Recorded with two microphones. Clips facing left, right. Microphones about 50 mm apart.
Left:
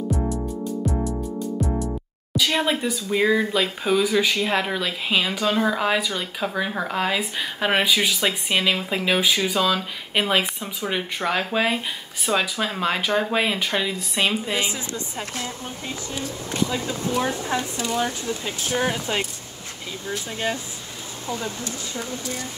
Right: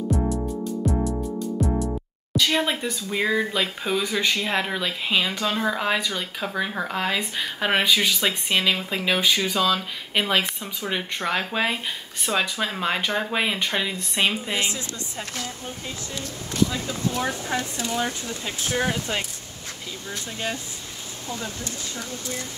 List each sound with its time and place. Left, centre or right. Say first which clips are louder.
0.1 s music: right 3 dB; centre
12.3 s speech: left 2 dB; centre
14.7 s speech: left 2 dB; centre
16.7 s speech: left 3 dB; centre
17.8 s speech: left 2 dB; centre